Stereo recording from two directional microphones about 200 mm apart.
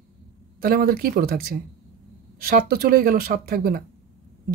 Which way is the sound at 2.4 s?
50° right (ahead or behind).